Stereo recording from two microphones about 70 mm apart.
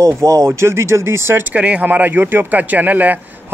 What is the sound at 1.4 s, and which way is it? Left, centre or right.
Speech, centre.